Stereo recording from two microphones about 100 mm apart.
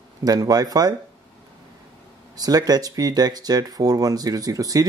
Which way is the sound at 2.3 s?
40° right (ahead or behind).